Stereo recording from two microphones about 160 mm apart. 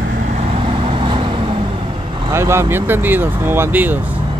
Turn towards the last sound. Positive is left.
turn(degrees=-10)  # may be behind; listen again after turning